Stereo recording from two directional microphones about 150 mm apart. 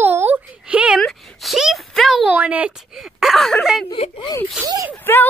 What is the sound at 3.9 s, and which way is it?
Speech, 30° left (ahead or behind).